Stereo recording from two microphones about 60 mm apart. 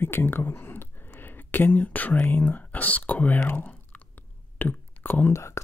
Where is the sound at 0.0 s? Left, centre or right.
Left.